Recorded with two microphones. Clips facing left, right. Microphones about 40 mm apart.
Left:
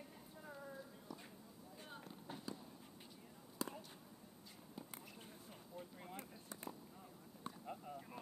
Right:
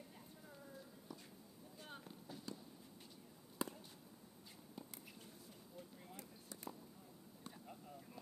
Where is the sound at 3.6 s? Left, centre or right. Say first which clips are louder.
Right 1 dB; right.